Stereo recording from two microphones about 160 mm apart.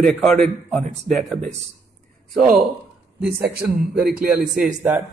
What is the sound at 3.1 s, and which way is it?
A man's voice, 85° right.